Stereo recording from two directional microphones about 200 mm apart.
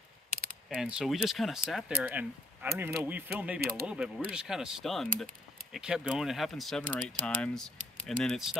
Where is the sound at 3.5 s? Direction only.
50° right (ahead or behind).